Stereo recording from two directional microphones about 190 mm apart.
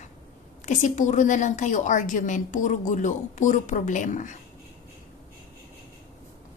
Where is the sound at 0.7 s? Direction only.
40° left (ahead or behind).